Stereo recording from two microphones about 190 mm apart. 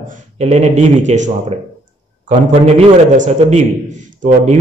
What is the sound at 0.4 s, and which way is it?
A man's voice, 35° right (ahead or behind).